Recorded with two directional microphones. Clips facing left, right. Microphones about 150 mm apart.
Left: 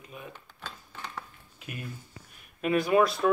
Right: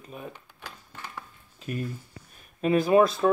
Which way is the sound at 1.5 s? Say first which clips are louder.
Right 9 dB; 35° right (ahead or behind).